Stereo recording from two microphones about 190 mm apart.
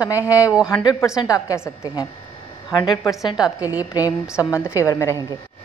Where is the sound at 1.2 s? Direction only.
20° left (ahead or behind).